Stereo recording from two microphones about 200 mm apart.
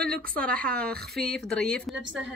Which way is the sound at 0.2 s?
5° left (ahead or behind).